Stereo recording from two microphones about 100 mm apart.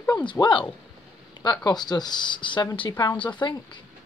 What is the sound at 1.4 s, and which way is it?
Speech, 45° left (ahead or behind).